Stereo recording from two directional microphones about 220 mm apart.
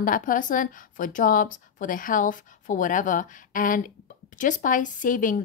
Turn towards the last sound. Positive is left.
turn(degrees=35)  # may be behind; listen again after turning